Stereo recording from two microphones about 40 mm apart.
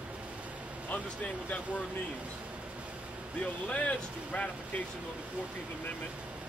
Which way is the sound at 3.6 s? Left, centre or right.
Left.